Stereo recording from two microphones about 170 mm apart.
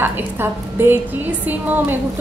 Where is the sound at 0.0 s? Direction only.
15° right (ahead or behind).